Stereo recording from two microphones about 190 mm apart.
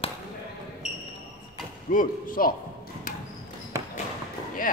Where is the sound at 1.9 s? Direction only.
45° left (ahead or behind).